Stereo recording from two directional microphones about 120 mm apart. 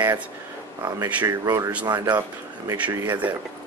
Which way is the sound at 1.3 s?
30° right (ahead or behind).